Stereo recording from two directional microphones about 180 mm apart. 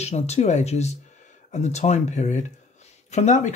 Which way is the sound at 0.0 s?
35° left (ahead or behind).